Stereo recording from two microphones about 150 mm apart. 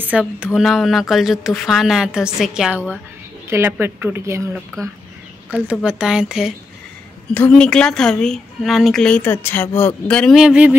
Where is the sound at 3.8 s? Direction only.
15° right (ahead or behind).